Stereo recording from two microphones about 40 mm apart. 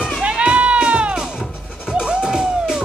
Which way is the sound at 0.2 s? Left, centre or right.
Right.